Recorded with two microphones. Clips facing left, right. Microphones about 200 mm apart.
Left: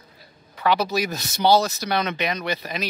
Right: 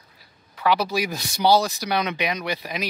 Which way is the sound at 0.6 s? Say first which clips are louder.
Even; 10° right (ahead or behind).